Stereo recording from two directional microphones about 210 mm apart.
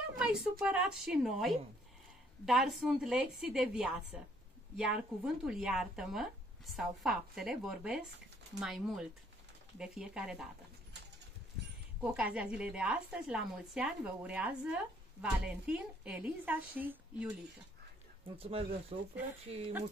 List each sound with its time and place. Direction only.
0.2 s speech: 5° right (ahead or behind)
12.0 s a woman's voice: 5° right (ahead or behind)
18.4 s speech: 25° right (ahead or behind)